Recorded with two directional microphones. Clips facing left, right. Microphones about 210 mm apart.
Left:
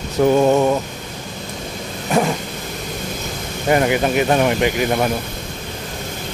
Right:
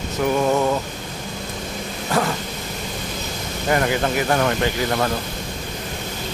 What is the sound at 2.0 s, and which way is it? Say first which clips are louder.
Dog: left 4 dB; 20° left (ahead or behind).